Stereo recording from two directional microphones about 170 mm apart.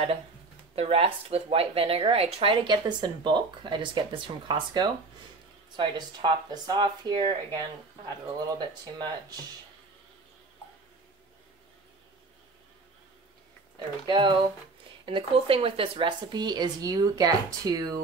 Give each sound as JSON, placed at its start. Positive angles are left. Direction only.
{"t": 0.7, "sound": "speech", "side_deg": -35}
{"t": 13.7, "sound": "speech", "side_deg": -30}